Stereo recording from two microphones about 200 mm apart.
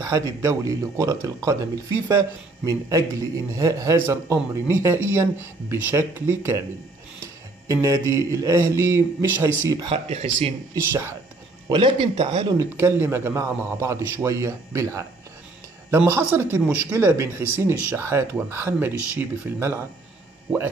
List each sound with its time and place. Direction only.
0.0 s speech: 15° right (ahead or behind)
2.6 s speech: 15° right (ahead or behind)
7.6 s speech: 15° right (ahead or behind)
9.8 s speech: 30° right (ahead or behind)
10.7 s speech: 10° right (ahead or behind)
11.7 s speech: 25° right (ahead or behind)
12.5 s speech: 10° right (ahead or behind)